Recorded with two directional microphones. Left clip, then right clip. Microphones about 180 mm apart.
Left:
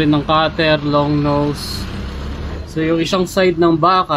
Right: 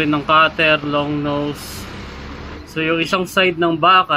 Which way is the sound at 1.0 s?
20° right (ahead or behind).